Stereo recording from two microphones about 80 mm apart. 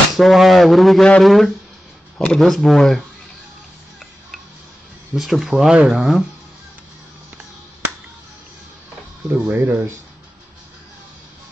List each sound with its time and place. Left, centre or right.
0.1 s speech: centre
5.1 s speech: centre
9.3 s speech: right